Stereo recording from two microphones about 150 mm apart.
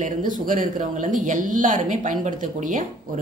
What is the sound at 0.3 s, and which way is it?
A woman's voice, 60° right (ahead or behind).